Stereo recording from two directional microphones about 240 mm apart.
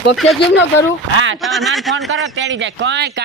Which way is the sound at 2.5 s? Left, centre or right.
Right.